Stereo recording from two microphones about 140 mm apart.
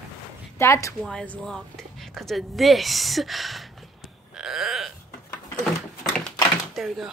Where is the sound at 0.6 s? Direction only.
20° left (ahead or behind).